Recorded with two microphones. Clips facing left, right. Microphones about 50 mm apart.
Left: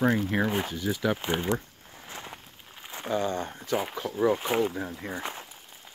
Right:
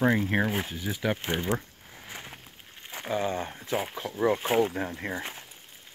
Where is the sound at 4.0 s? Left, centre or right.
Centre.